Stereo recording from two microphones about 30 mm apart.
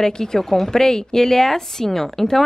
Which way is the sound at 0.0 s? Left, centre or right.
Centre.